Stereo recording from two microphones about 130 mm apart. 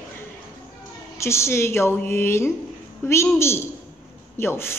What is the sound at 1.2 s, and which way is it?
A woman's voice, 20° left (ahead or behind).